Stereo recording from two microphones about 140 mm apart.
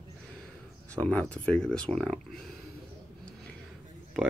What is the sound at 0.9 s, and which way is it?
Speech, 10° left (ahead or behind).